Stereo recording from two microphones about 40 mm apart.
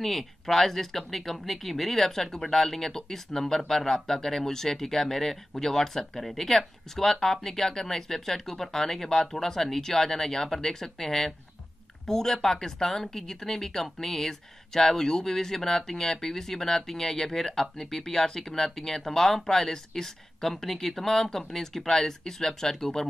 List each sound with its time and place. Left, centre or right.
0.0 s speech: centre